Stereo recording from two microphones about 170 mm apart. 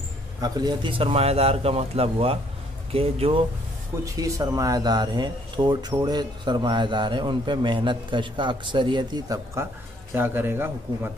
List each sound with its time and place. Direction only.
0.4 s speech: 25° right (ahead or behind)
4.0 s speech: 20° right (ahead or behind)
10.1 s a man's voice: 10° right (ahead or behind)